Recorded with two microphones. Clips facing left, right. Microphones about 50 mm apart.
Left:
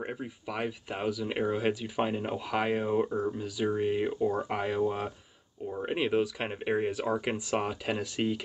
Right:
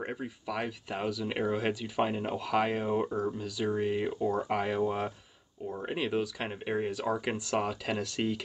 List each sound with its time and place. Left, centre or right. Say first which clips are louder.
0.0 s a sound: even; centre
0.5 s speech: left 1 dB; centre
2.9 s speech: left 2 dB; centre
3.3 s speech: left 1 dB; centre
5.9 s speech: left 4 dB; centre